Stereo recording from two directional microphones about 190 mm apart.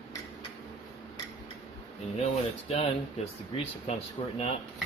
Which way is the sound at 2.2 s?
35° left (ahead or behind).